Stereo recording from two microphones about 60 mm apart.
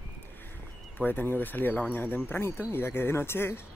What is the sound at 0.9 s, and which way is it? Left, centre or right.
Speech, left.